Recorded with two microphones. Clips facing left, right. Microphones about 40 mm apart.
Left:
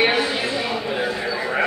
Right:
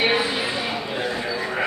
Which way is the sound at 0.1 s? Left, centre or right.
Centre.